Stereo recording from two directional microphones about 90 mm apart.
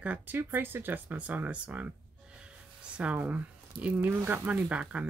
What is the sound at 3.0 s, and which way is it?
Speech, 15° right (ahead or behind).